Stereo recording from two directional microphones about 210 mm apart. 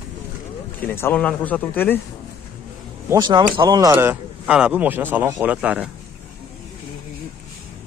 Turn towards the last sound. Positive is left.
turn(degrees=-5)  # may be behind; listen again after turning